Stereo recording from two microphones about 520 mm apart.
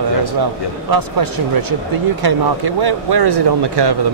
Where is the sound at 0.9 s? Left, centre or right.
Right.